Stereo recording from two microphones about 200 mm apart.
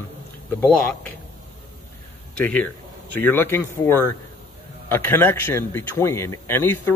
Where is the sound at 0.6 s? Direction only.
10° left (ahead or behind).